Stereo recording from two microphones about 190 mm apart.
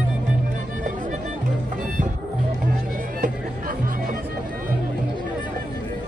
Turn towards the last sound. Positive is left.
turn(degrees=-45)  # may be behind; listen again after turning